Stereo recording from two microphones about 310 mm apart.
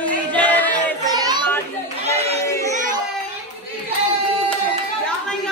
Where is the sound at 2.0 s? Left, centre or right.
Centre.